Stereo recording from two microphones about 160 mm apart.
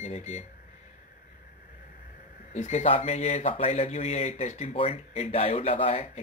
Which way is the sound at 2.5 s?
45° left (ahead or behind).